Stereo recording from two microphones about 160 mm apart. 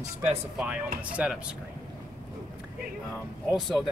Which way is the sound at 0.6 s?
5° right (ahead or behind).